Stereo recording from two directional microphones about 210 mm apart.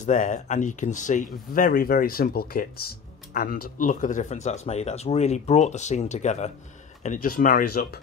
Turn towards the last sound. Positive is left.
turn(degrees=45)  # may be behind; listen again after turning